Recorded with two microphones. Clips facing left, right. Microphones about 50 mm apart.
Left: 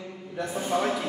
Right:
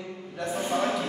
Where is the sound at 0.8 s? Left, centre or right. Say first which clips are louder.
Even; centre.